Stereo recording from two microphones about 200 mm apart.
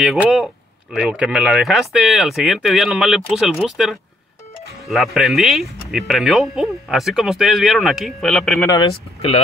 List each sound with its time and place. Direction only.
0.0 s speech: 5° right (ahead or behind)
8.6 s speech: 20° left (ahead or behind)